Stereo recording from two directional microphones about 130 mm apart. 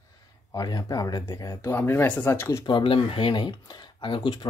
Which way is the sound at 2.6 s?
40° left (ahead or behind).